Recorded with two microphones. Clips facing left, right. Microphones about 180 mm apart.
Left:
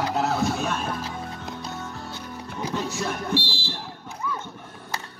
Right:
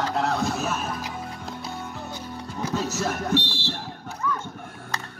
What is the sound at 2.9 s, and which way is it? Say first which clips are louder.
Speech: right 2 dB; 45° right (ahead or behind).